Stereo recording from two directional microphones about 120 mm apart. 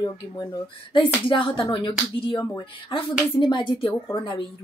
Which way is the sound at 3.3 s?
40° left (ahead or behind).